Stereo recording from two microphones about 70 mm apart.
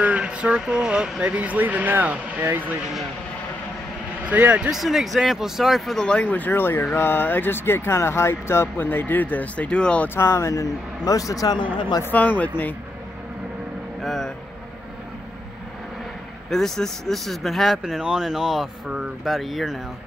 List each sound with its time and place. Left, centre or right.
0.0 s vehicle: centre
0.6 s speech: centre; by 2.6 s right
4.3 s speech: right
4.6 s speech: centre
10.0 s a man's voice: left
12.1 s speech: left
14.0 s speech: centre
16.4 s speech: centre